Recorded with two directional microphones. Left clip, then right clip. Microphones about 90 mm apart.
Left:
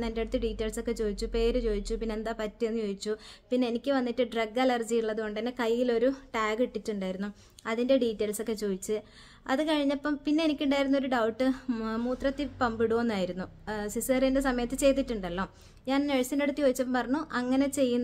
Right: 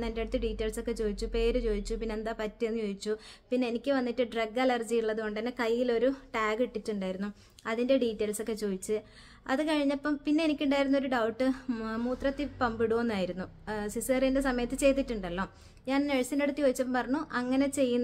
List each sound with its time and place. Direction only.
0.0 s speech: 35° left (ahead or behind)